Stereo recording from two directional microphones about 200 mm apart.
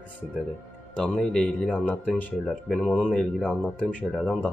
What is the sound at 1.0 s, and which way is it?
A man's voice, 5° left (ahead or behind).